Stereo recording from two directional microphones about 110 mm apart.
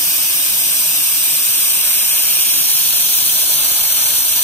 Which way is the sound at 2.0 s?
20° left (ahead or behind).